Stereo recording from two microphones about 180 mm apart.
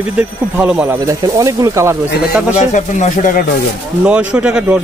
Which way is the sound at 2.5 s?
45° left (ahead or behind).